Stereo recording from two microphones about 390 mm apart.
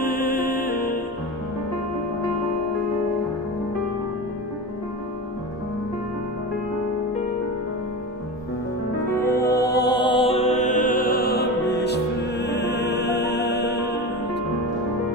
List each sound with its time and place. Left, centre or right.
0.0 s music: left
9.1 s music: centre; by 13.9 s left